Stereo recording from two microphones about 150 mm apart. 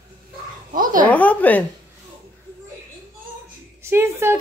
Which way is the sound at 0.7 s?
60° right (ahead or behind).